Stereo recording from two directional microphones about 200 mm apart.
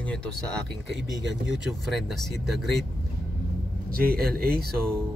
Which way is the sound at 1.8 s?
Centre (ahead or behind).